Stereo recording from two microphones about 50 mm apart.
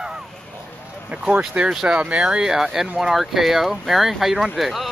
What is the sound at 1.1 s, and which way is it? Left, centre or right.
Speech, right.